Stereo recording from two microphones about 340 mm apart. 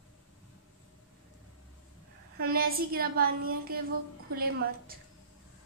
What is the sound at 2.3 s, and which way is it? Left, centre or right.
A woman's voice, right.